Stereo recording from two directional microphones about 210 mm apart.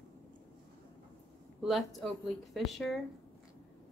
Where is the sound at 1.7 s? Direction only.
Centre (ahead or behind).